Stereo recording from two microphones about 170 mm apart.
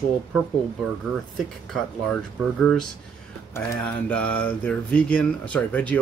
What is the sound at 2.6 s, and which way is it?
Speech, centre (ahead or behind).